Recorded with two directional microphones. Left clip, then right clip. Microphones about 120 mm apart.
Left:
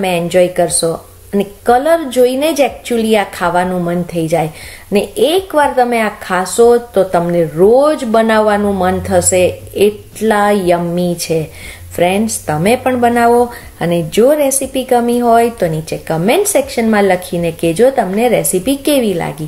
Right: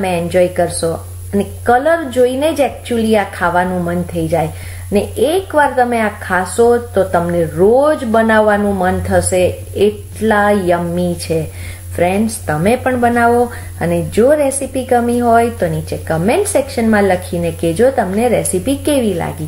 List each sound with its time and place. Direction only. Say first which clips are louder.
0.0 s a woman's voice: left 2 dB; 20° left (ahead or behind)
12.4 s a woman's voice: left 2 dB; 15° left (ahead or behind)